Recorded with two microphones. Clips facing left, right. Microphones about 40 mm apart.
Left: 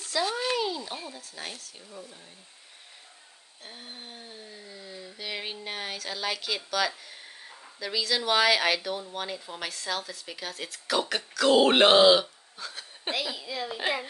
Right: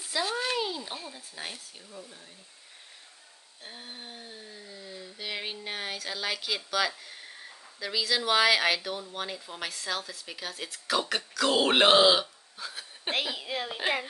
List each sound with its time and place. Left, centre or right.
0.0 s a sound: centre
0.3 s a sound: centre
1.3 s speech: centre
1.9 s speech: centre
3.6 s speech: centre
13.4 s a woman's voice: right